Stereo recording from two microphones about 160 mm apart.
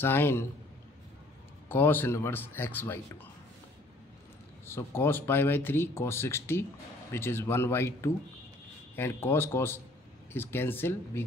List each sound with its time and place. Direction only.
0.0 s speech: 15° left (ahead or behind)
1.7 s speech: 15° left (ahead or behind)
4.6 s speech: 15° left (ahead or behind)